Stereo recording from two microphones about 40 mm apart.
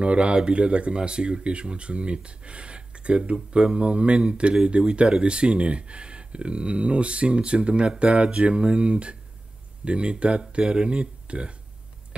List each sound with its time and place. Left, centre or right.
0.0 s speech: right